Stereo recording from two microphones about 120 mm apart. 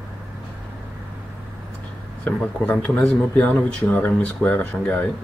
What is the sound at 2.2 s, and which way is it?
Speech, 10° left (ahead or behind).